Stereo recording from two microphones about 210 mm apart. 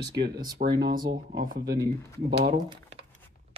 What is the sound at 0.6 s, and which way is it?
Speech, 45° right (ahead or behind).